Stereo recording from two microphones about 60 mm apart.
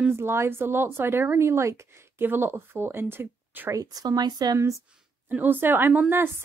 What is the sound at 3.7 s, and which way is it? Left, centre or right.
Speech, right.